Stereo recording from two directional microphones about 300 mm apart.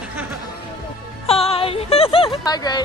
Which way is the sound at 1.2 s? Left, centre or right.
Centre.